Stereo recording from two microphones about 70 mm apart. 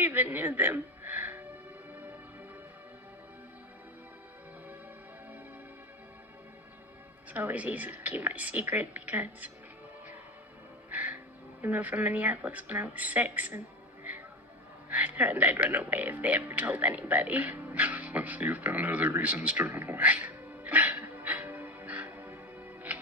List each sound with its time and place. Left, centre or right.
0.0 s a woman's voice: right
7.3 s speech: right
10.9 s music: right
11.6 s speech: right
14.9 s speech: right
19.6 s music: right